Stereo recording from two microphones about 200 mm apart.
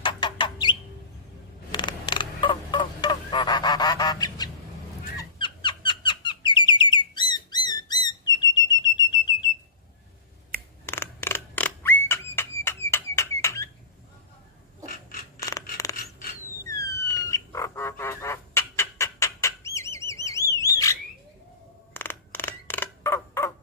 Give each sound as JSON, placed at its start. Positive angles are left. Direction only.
{"t": 0.0, "sound": "chicken", "side_deg": 25}
{"t": 1.7, "sound": "creak", "side_deg": 25}
{"t": 5.1, "sound": "fowl", "side_deg": 25}
{"t": 5.9, "sound": "bird", "side_deg": 25}
{"t": 10.9, "sound": "a sound", "side_deg": 10}
{"t": 14.9, "sound": "creak", "side_deg": 45}
{"t": 16.6, "sound": "frog", "side_deg": 15}
{"t": 20.6, "sound": "a sound", "side_deg": 15}